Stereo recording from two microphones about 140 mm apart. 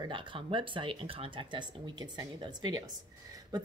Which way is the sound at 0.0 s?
35° right (ahead or behind).